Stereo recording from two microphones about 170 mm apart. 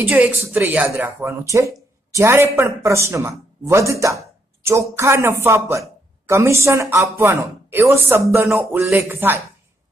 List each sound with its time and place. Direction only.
0.0 s speech: 10° right (ahead or behind)